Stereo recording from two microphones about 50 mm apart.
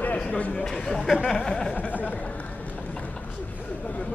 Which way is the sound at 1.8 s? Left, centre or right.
Left.